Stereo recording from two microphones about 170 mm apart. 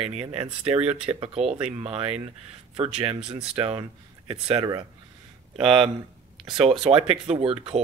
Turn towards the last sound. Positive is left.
turn(degrees=-35)  # may be behind; listen again after turning